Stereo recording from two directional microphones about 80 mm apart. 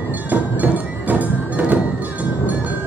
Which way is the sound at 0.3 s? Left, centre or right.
Right.